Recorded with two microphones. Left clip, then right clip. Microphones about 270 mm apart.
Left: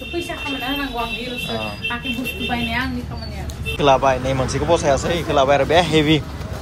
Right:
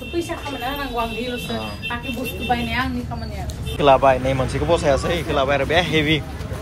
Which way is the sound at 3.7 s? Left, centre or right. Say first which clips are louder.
Right 1 dB; centre.